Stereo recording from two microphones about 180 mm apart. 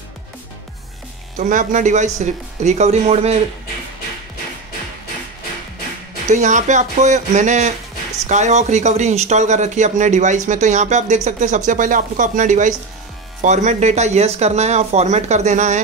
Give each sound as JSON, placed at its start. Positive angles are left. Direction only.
{"t": 1.4, "sound": "speech", "side_deg": -45}
{"t": 6.2, "sound": "speech", "side_deg": -40}